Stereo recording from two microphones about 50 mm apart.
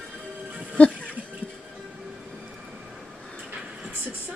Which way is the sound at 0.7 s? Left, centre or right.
Left.